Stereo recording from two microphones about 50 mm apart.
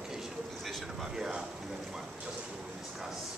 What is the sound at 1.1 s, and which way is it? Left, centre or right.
Speech, centre.